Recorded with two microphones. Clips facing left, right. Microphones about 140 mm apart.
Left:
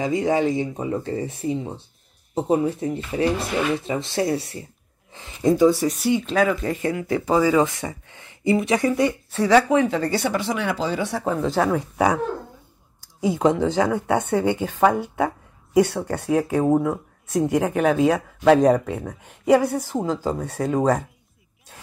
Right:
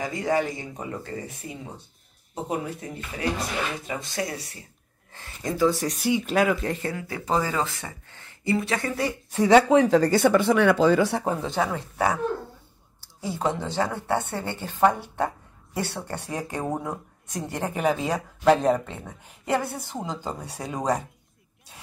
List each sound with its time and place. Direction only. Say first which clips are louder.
0.0 s speech: left 5 dB; 20° left (ahead or behind)
5.8 s speech: left 6 dB; 5° left (ahead or behind)
6.2 s speech: left 2 dB; 5° right (ahead or behind)
6.8 s speech: left 8 dB; 20° left (ahead or behind)
9.3 s speech: right 2 dB; 20° right (ahead or behind); by 11.0 s 55° right (ahead or behind)
11.4 s speech: left 6 dB; centre (ahead or behind)
13.2 s speech: left 8 dB; 15° left (ahead or behind)
21.7 s a sound: left 3 dB; centre (ahead or behind)